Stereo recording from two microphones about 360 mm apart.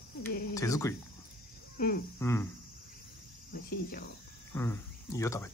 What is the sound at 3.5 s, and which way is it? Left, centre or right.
Cricket, left.